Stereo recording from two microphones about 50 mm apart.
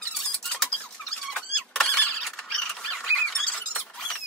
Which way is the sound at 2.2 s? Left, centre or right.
Centre.